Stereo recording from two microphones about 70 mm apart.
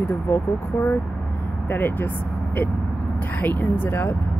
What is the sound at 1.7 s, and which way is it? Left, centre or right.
Speech, left.